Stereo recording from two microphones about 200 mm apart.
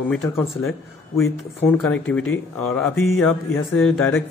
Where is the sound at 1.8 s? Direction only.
5° left (ahead or behind).